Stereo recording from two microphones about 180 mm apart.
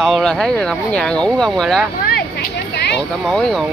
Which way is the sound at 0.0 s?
5° left (ahead or behind).